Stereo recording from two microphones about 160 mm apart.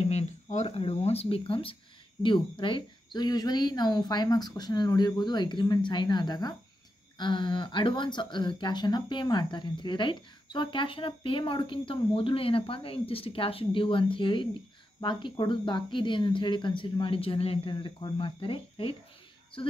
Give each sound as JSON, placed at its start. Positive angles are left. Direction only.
{"t": 0.1, "sound": "speech", "side_deg": 45}